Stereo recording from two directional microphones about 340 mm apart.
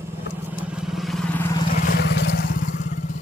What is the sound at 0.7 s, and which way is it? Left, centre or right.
Vehicle, centre.